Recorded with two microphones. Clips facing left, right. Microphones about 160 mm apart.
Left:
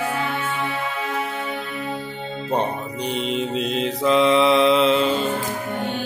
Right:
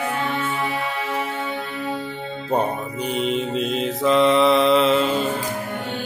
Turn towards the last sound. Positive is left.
turn(degrees=-5)  # may be behind; listen again after turning